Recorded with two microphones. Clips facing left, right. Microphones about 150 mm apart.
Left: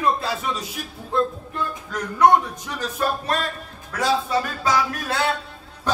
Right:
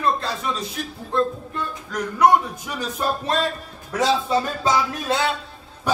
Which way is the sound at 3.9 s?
25° right (ahead or behind).